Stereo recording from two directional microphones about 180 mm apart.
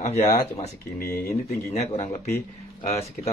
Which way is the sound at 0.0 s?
35° left (ahead or behind).